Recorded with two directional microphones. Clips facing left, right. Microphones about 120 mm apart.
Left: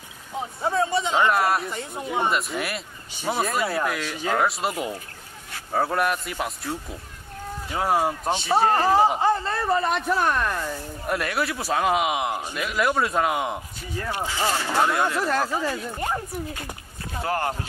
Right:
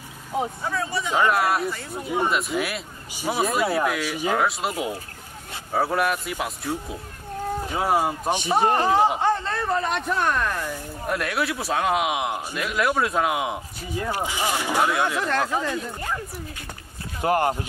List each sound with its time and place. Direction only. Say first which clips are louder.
0.6 s speech: left 4 dB; 30° left (ahead or behind)
1.2 s a man's voice: right 3 dB; centre (ahead or behind)
1.7 s speech: right 1 dB; 20° left (ahead or behind)
2.2 s a man's voice: right 2 dB; centre (ahead or behind)
3.1 s a man's voice: right 1 dB; 10° right (ahead or behind)
8.3 s speech: even; 15° right (ahead or behind)
8.7 s a man's voice: left 1 dB; centre (ahead or behind)
14.2 s speech: even; 15° right (ahead or behind)
14.9 s a man's voice: even; centre (ahead or behind)
17.2 s speech: right 5 dB; 20° right (ahead or behind)